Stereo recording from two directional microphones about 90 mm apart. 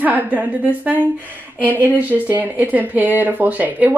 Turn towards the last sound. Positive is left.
turn(degrees=-20)  # may be behind; listen again after turning